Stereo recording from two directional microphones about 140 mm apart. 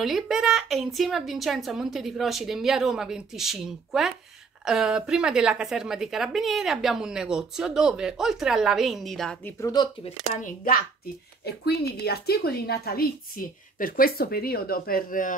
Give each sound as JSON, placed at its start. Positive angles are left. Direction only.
{"t": 0.0, "sound": "a woman's voice", "side_deg": 0}
{"t": 9.6, "sound": "speech", "side_deg": 25}
{"t": 10.4, "sound": "a woman's voice", "side_deg": 90}
{"t": 12.3, "sound": "a woman's voice", "side_deg": 90}